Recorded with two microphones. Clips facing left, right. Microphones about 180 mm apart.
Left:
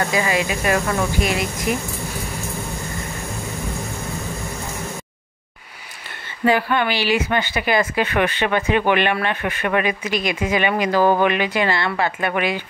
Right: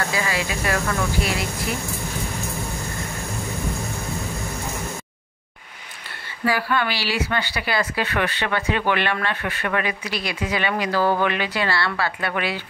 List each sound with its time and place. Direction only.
0.1 s speech: 20° left (ahead or behind)
6.4 s speech: 20° left (ahead or behind)